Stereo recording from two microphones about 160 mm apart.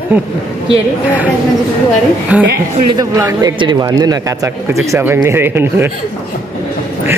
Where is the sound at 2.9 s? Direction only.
20° right (ahead or behind).